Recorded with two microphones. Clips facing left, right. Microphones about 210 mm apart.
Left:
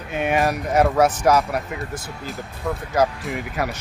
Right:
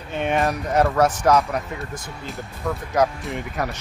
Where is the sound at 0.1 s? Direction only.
5° left (ahead or behind).